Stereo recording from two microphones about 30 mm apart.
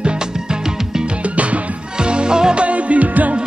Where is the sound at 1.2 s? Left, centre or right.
Right.